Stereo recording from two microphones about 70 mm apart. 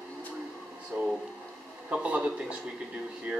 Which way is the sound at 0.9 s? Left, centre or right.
Right.